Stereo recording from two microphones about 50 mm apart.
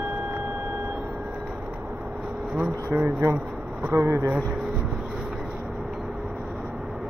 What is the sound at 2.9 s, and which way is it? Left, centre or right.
Speech, right.